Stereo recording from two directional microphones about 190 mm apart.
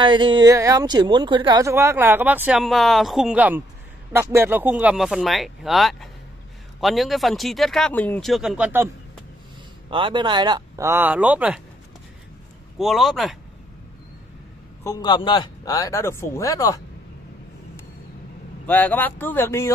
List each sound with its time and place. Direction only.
0.0 s speech: 25° right (ahead or behind); by 8.8 s 5° right (ahead or behind)
9.8 s speech: 25° right (ahead or behind); by 11.6 s 5° right (ahead or behind)
12.7 s speech: centre (ahead or behind)
14.8 s a man's voice: 20° left (ahead or behind)
18.7 s a man's voice: 10° left (ahead or behind)